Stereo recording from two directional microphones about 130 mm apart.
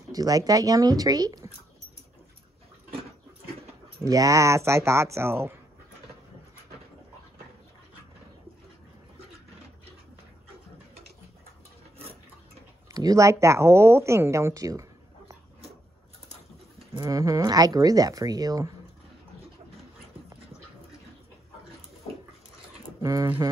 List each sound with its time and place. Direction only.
0.1 s speech: 30° right (ahead or behind)
4.0 s speech: 25° right (ahead or behind)
12.9 s speech: 25° right (ahead or behind)
17.0 s speech: 25° right (ahead or behind)
23.0 s speech: 25° right (ahead or behind)